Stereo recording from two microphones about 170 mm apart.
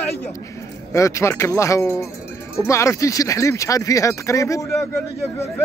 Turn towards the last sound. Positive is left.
turn(degrees=15)  # may be behind; listen again after turning